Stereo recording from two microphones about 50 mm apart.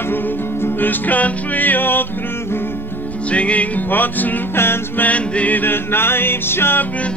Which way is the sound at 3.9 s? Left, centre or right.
Left.